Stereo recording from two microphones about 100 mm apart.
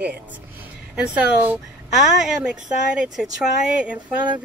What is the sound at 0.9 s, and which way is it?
Speech, 10° right (ahead or behind).